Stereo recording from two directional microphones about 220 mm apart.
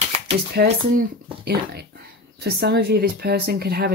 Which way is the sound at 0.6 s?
45° right (ahead or behind).